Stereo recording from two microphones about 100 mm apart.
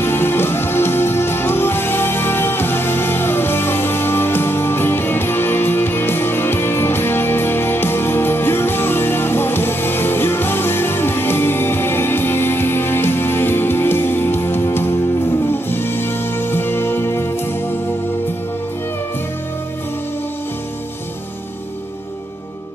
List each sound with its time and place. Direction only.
0.0 s music: 20° left (ahead or behind)